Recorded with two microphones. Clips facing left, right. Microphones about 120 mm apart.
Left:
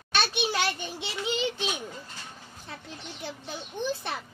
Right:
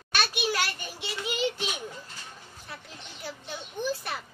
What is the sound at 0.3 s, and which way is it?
Child singing, 25° left (ahead or behind).